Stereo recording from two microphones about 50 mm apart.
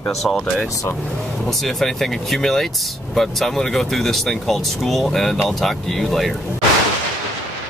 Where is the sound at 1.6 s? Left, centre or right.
Centre.